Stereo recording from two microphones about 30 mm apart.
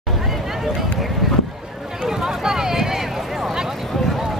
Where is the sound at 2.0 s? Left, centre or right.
Centre.